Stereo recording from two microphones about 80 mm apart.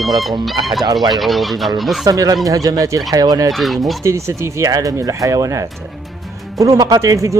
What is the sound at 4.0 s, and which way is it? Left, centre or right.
Speech, right.